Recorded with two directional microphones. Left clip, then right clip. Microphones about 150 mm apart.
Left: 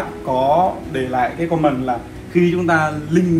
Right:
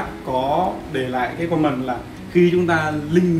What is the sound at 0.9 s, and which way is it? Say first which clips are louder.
Speech: left 3 dB; 10° left (ahead or behind).